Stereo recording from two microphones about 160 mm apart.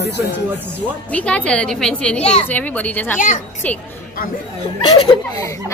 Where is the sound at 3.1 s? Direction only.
55° left (ahead or behind).